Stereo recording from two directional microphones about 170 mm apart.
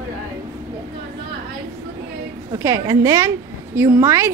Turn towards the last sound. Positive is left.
turn(degrees=-15)  # may be behind; listen again after turning